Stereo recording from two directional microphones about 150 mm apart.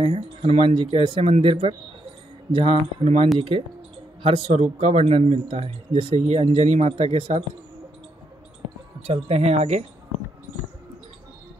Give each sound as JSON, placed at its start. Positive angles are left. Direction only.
{"t": 0.0, "sound": "speech", "side_deg": -35}
{"t": 9.0, "sound": "speech", "side_deg": -40}